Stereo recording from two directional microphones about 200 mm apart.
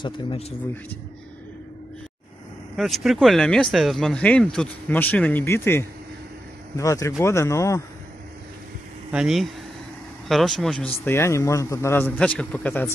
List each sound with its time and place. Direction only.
0.0 s speech: 30° left (ahead or behind)
2.7 s speech: centre (ahead or behind)
9.1 s speech: centre (ahead or behind)
11.1 s speech: 15° left (ahead or behind)